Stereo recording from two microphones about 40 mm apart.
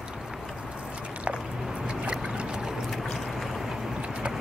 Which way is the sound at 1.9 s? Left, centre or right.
Right.